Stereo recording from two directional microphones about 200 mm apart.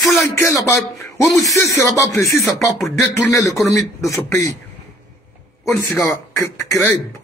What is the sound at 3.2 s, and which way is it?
Speech, 15° left (ahead or behind).